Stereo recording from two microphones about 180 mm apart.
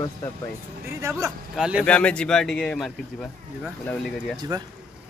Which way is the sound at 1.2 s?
5° right (ahead or behind).